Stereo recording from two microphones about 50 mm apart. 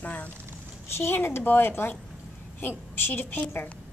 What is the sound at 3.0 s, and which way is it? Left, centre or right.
Speech, left.